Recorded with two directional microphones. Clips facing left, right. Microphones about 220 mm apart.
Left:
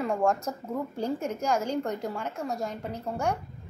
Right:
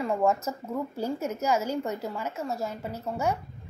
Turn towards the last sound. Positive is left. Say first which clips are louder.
# right 1 dB
turn(degrees=-5)  # may be behind; listen again after turning